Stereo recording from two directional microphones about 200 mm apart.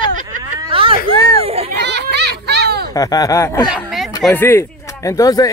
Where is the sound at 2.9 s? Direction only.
15° left (ahead or behind).